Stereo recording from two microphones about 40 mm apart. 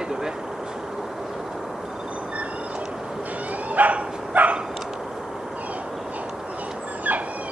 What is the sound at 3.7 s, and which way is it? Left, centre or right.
Dog, right.